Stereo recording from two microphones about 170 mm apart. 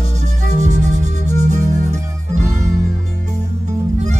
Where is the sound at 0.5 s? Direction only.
45° right (ahead or behind).